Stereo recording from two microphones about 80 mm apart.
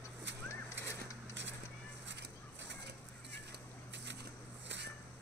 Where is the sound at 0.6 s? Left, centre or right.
Left.